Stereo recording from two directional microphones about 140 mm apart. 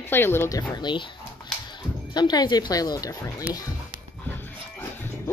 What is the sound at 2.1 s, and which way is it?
Speech, 30° left (ahead or behind).